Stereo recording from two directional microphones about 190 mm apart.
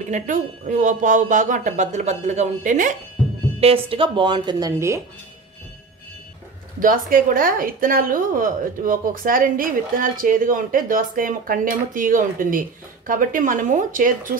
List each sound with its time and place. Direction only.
0.1 s speech: 40° right (ahead or behind)
3.6 s a woman's voice: 30° right (ahead or behind); by 5.0 s 15° right (ahead or behind)
6.8 s a woman's voice: 45° right (ahead or behind)